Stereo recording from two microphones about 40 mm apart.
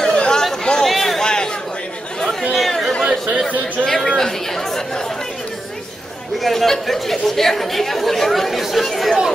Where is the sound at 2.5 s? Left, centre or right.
Centre.